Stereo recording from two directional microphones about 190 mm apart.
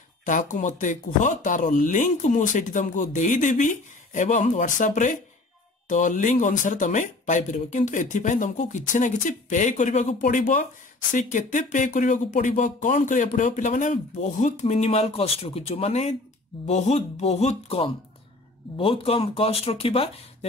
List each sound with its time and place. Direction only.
0.2 s speech: 40° left (ahead or behind)